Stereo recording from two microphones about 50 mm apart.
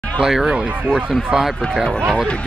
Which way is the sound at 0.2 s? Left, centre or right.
Centre.